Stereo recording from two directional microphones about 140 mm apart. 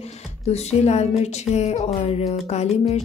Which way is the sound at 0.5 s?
50° left (ahead or behind).